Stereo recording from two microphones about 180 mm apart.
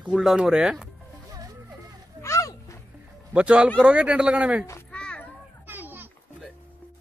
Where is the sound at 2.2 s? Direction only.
15° left (ahead or behind).